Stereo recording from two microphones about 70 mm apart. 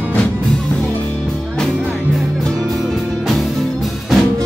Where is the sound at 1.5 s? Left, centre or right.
Centre.